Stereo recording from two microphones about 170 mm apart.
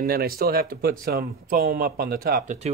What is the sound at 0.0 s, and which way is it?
Speech, 60° right (ahead or behind).